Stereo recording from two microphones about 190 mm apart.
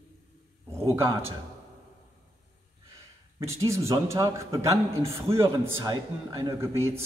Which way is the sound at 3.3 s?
15° right (ahead or behind).